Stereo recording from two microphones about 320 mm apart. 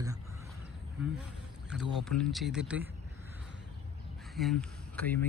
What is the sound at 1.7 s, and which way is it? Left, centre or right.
Speech, centre.